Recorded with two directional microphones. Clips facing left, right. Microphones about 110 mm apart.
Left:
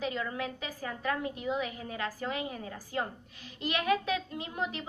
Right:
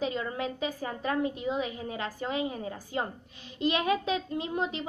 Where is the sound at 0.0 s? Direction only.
25° right (ahead or behind).